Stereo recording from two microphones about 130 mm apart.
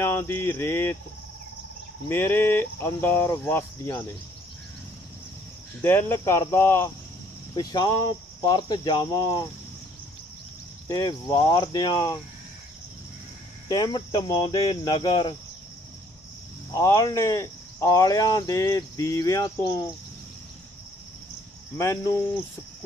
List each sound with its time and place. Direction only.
0.0 s cricket: 20° left (ahead or behind)
2.0 s speech: 15° left (ahead or behind)
5.8 s cricket: 20° left (ahead or behind)
7.5 s speech: 30° left (ahead or behind)
10.9 s cricket: 25° left (ahead or behind)
13.7 s speech: 30° left (ahead or behind)
16.7 s cricket: 25° left (ahead or behind)
21.7 s cricket: 20° left (ahead or behind)